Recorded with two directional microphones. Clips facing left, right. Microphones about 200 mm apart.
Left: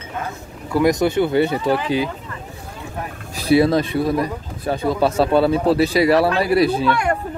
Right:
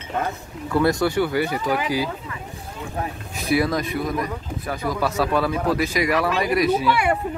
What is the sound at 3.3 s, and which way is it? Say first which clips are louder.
Speech: left 7 dB; 30° left (ahead or behind).